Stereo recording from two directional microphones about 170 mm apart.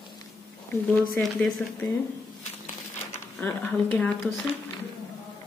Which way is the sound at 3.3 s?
10° left (ahead or behind).